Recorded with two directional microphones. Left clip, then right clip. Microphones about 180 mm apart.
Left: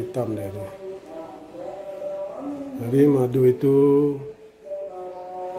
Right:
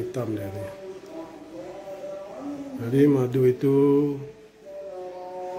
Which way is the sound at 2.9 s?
10° left (ahead or behind).